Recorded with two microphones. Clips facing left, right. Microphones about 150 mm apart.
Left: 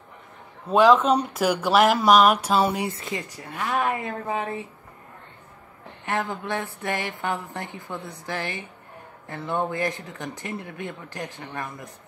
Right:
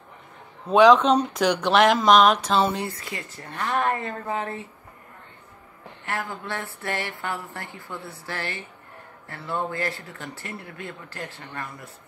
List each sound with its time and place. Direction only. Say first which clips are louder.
0.7 s speech: right 2 dB; 5° left (ahead or behind)
2.9 s speech: left 4 dB; 20° left (ahead or behind)
6.0 s speech: left 4 dB; 20° left (ahead or behind)